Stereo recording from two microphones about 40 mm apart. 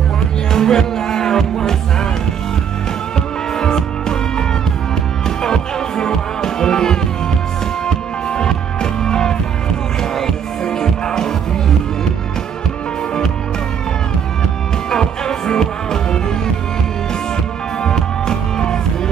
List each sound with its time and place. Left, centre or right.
0.5 s music: centre
3.2 s music: centre
14.9 s music: centre
17.8 s music: centre